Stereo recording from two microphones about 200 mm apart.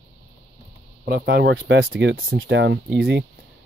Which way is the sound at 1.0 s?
50° right (ahead or behind).